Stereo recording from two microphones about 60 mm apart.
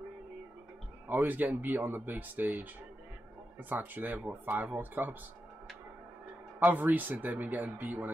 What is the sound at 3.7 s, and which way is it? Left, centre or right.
Speech, right.